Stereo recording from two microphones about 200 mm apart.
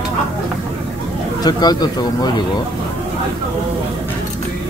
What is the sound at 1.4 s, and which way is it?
Speech, 20° left (ahead or behind).